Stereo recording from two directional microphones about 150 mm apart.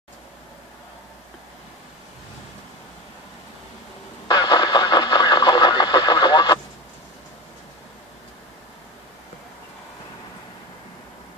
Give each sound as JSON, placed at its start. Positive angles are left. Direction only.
{"t": 4.3, "sound": "vehicle", "side_deg": 30}